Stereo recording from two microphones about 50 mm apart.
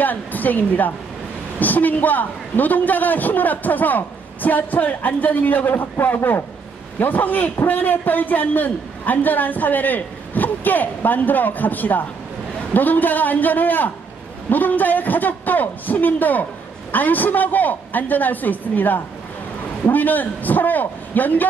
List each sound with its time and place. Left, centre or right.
0.0 s a man's voice: left